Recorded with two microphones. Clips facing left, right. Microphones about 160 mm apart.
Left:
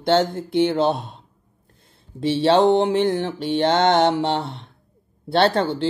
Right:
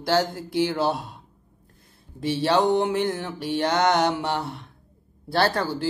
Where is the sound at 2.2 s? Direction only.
25° left (ahead or behind).